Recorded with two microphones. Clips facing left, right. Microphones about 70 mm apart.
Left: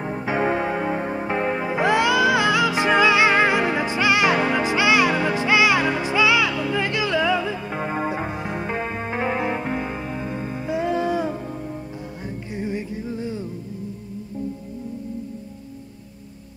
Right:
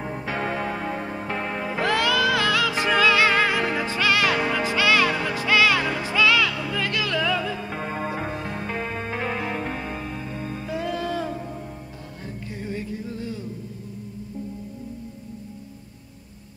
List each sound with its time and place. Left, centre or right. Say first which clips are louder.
0.0 s music: left 5 dB; centre
12.5 s music: left 4 dB; left